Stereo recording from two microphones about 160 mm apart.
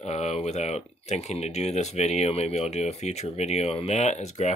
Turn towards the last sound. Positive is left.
turn(degrees=45)  # may be behind; listen again after turning